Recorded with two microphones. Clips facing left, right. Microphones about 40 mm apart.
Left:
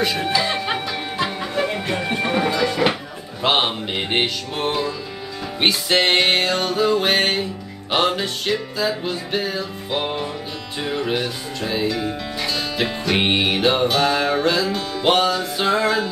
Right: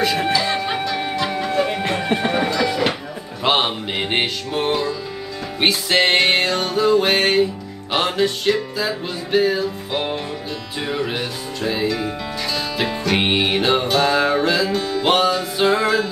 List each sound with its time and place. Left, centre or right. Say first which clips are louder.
0.3 s music: right 1 dB; centre
1.9 s music: right 2 dB; right
2.5 s music: even; centre